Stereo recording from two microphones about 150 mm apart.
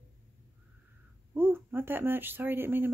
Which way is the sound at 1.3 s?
15° right (ahead or behind).